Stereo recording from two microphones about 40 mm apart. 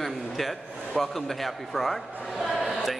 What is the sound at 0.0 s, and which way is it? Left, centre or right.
A man's voice, centre.